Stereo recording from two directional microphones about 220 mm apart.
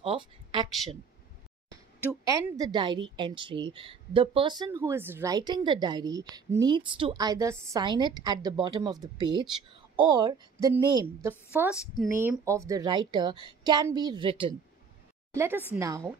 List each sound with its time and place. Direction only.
0.0 s speech: 20° right (ahead or behind)
1.7 s a woman's voice: 10° right (ahead or behind)
15.3 s a woman's voice: 10° right (ahead or behind)